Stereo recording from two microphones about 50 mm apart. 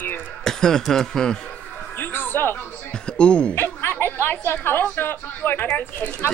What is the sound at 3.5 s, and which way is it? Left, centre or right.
A woman's voice, left.